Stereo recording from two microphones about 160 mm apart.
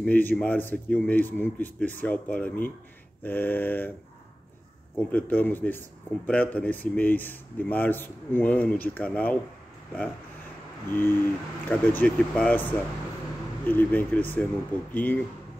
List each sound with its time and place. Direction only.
0.0 s a man's voice: 10° left (ahead or behind)
4.9 s a man's voice: 10° left (ahead or behind)
10.9 s a man's voice: 15° left (ahead or behind)